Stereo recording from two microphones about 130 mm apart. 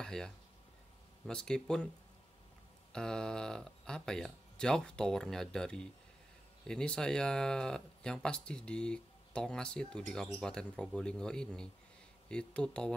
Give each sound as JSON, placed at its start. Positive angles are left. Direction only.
{"t": 0.0, "sound": "speech", "side_deg": 5}
{"t": 2.9, "sound": "a man's voice", "side_deg": 5}